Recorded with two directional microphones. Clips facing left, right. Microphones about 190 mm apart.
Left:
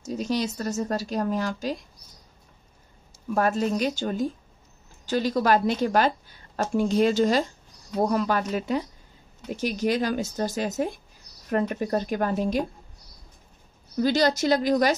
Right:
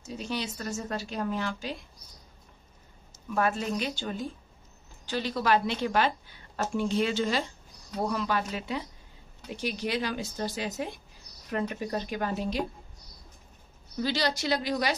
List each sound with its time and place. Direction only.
0.0 s speech: 40° left (ahead or behind)
3.3 s a woman's voice: 40° left (ahead or behind)
14.0 s a woman's voice: 45° left (ahead or behind)